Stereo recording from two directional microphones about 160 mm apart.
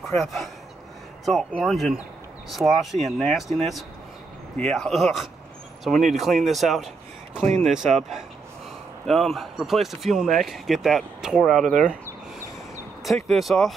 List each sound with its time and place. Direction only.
0.0 s speech: centre (ahead or behind)
1.6 s speech: centre (ahead or behind)
7.4 s speech: 45° right (ahead or behind)
7.7 s speech: centre (ahead or behind)
13.0 s speech: centre (ahead or behind)